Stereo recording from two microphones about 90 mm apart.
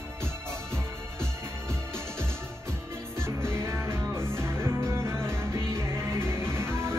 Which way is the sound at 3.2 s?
30° right (ahead or behind).